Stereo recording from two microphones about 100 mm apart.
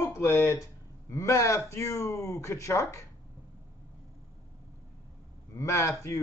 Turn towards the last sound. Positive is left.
turn(degrees=30)  # may be behind; listen again after turning